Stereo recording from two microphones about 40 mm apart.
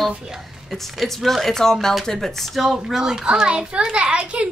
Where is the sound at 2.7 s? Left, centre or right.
Centre; by 4.5 s right.